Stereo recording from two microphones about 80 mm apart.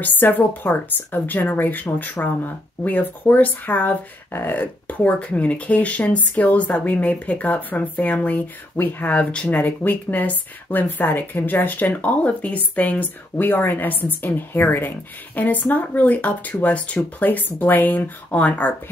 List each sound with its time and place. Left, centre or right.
0.0 s speech: left